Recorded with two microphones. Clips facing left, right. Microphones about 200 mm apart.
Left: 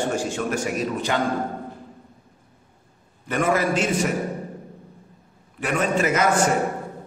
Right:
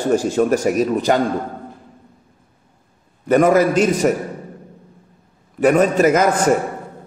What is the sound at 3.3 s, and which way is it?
Speech, 40° right (ahead or behind).